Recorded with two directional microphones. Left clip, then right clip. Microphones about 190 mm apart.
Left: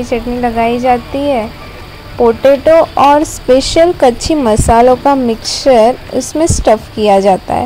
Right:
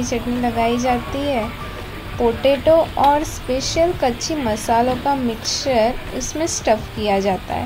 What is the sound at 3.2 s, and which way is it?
A woman's voice, 40° left (ahead or behind).